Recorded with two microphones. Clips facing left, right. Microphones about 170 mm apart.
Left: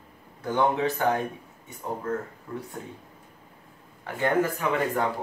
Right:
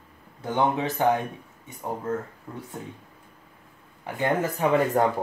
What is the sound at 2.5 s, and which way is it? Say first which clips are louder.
Speech: left 4 dB; 20° right (ahead or behind).